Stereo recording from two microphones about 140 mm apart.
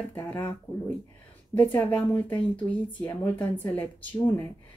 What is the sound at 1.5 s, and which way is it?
Speech, 15° left (ahead or behind).